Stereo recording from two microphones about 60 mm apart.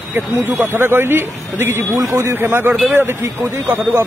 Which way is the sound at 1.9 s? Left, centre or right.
Right.